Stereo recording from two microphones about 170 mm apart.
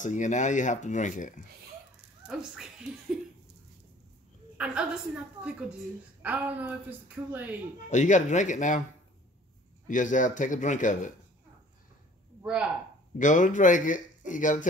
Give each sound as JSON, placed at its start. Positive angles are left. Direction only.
{"t": 0.0, "sound": "speech", "side_deg": 45}
{"t": 2.2, "sound": "speech", "side_deg": -5}
{"t": 4.6, "sound": "a woman's voice", "side_deg": -5}
{"t": 7.9, "sound": "speech", "side_deg": 45}
{"t": 9.8, "sound": "speech", "side_deg": 50}
{"t": 13.2, "sound": "speech", "side_deg": 45}